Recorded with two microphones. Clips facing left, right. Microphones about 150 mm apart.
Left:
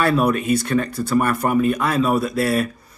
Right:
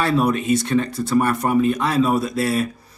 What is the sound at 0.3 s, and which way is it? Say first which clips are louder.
A man's voice: even; 25° right (ahead or behind).